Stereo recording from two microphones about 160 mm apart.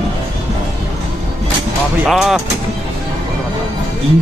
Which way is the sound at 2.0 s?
Centre (ahead or behind).